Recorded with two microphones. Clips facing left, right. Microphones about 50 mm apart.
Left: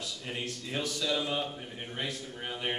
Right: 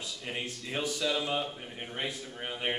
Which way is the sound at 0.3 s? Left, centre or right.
Centre.